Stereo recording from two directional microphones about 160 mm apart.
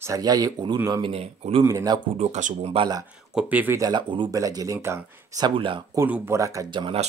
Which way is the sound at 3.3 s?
10° right (ahead or behind).